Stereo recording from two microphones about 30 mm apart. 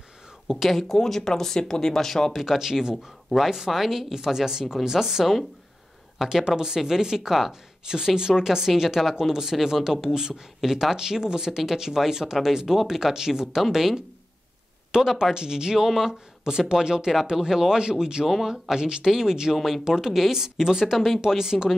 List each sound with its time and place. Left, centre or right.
0.5 s speech: centre
0.9 s speech: centre
2.3 s speech: centre
4.1 s speech: centre
14.9 s speech: right
15.8 s speech: centre
16.1 s speech: right
18.2 s speech: centre
18.5 s speech: right
19.5 s speech: centre